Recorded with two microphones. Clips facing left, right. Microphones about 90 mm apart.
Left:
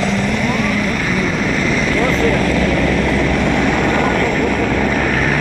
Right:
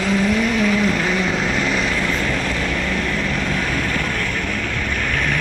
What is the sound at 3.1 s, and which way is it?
Vehicle, 60° left (ahead or behind).